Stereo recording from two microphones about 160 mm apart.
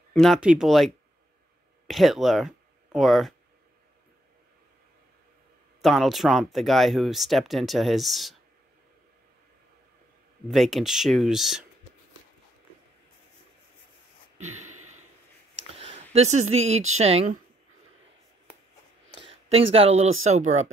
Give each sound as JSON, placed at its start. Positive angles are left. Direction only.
{"t": 0.1, "sound": "speech", "side_deg": 0}
{"t": 5.8, "sound": "speech", "side_deg": 0}
{"t": 10.5, "sound": "speech", "side_deg": 0}
{"t": 15.7, "sound": "speech", "side_deg": -40}
{"t": 19.2, "sound": "speech", "side_deg": -40}